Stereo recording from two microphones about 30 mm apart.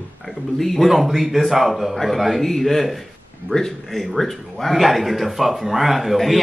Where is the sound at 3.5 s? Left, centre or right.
Left.